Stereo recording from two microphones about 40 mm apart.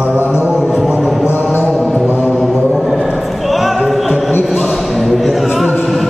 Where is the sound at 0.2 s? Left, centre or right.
Left.